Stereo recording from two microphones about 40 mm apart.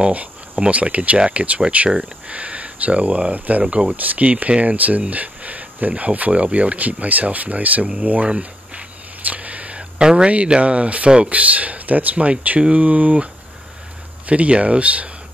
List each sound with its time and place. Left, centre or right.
0.0 s speech: right
8.4 s a sound: right
9.9 s speech: right